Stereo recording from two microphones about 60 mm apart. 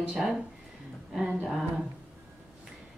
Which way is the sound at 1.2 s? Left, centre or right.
Centre.